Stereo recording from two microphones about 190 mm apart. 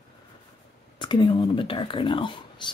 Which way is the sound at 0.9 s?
25° left (ahead or behind).